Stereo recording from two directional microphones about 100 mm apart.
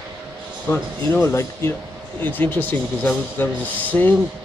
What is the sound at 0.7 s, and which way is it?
A man's voice, 25° left (ahead or behind).